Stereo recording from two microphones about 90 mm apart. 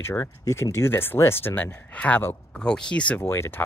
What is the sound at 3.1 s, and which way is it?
Speech, 30° left (ahead or behind).